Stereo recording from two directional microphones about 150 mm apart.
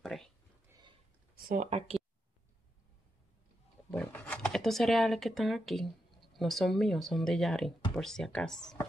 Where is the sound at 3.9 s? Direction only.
15° left (ahead or behind).